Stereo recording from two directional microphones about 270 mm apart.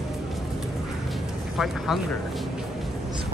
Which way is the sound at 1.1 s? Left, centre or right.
Centre.